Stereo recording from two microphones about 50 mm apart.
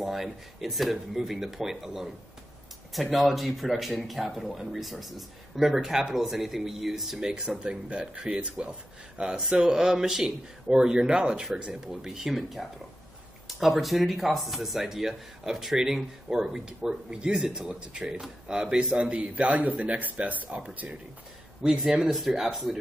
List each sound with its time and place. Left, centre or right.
0.0 s speech: centre
7.2 s a man's voice: centre; by 20.9 s right
21.6 s speech: centre